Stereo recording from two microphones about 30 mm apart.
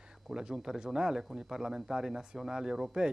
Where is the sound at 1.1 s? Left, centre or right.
Centre.